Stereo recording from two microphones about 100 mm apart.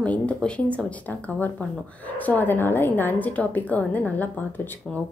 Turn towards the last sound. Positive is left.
turn(degrees=15)  # may be behind; listen again after turning